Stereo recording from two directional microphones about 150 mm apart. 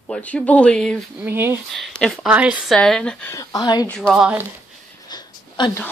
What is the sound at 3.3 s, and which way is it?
Speech, 25° left (ahead or behind).